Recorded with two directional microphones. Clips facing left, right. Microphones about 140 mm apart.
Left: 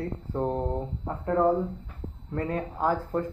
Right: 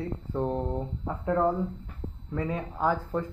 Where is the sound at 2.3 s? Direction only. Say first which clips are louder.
Left 2 dB; centre (ahead or behind).